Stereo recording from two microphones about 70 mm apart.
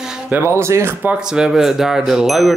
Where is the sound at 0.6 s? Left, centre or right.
Right.